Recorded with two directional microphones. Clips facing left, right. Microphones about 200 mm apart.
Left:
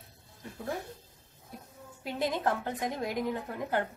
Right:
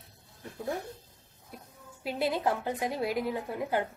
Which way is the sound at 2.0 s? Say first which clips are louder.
Right 1 dB; 5° right (ahead or behind).